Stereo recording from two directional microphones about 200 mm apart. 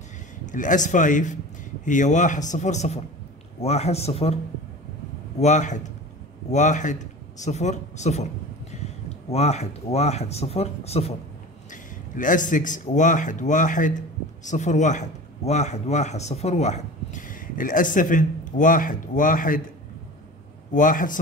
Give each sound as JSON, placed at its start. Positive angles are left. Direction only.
{"t": 0.5, "sound": "speech", "side_deg": 40}
{"t": 5.4, "sound": "speech", "side_deg": 35}
{"t": 9.3, "sound": "speech", "side_deg": 35}
{"t": 20.7, "sound": "speech", "side_deg": 40}